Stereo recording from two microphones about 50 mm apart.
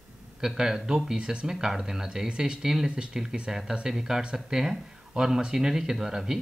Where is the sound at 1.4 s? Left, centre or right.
Centre.